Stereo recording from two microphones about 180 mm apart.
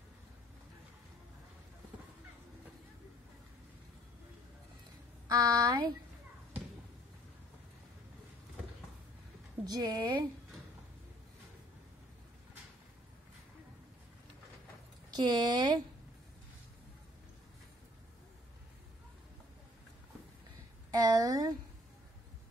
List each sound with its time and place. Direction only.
5.3 s speech: 20° right (ahead or behind)
9.7 s speech: 20° right (ahead or behind)
15.1 s speech: 25° right (ahead or behind)
20.9 s speech: 20° right (ahead or behind)